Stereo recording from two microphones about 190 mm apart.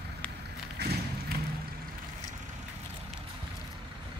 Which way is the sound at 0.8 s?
60° right (ahead or behind).